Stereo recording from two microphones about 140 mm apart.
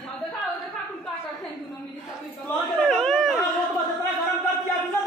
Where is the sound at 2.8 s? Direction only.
Centre (ahead or behind).